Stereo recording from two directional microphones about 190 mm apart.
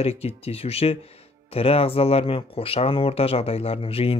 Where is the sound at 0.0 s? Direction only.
35° left (ahead or behind).